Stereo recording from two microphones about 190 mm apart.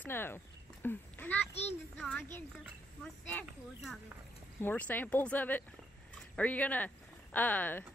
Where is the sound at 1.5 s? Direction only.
35° left (ahead or behind).